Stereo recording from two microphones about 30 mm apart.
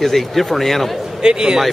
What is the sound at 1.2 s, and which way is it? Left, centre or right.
Speech, right.